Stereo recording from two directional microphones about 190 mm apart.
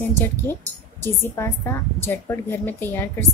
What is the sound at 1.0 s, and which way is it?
A woman's voice, 10° left (ahead or behind).